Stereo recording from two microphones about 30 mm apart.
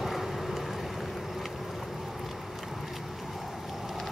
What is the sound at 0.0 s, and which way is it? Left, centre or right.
Vehicle, centre.